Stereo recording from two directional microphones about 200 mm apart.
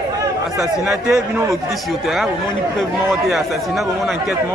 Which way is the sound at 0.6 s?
5° right (ahead or behind).